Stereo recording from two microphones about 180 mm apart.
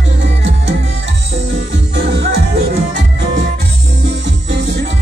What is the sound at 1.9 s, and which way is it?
Music, 65° right (ahead or behind).